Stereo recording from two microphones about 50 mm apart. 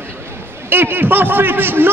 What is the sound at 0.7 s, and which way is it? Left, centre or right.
A man's voice, right.